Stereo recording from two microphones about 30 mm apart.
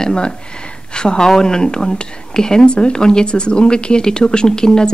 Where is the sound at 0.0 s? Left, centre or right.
Left.